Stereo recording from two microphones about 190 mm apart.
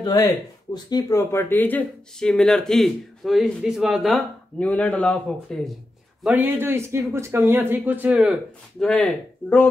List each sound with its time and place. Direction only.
0.0 s speech: 20° left (ahead or behind)
6.2 s speech: 10° right (ahead or behind); by 9.7 s 5° left (ahead or behind)